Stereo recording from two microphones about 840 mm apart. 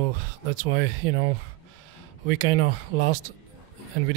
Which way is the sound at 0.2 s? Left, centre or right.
Right.